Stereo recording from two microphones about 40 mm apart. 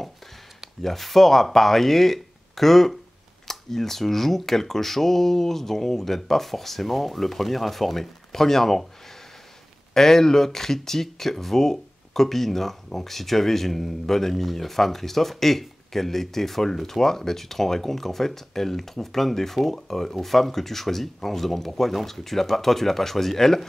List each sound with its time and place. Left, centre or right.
0.8 s speech: centre
9.9 s speech: centre